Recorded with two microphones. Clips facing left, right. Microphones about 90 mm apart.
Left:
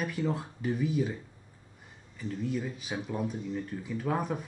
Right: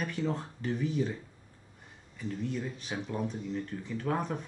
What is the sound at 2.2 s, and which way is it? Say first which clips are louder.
Speech: left 2 dB; centre (ahead or behind).